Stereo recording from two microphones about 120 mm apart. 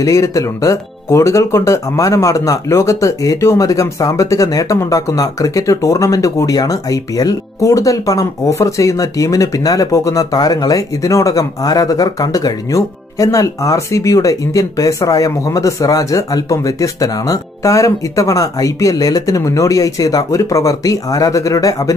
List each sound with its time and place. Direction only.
0.0 s speech: 25° left (ahead or behind)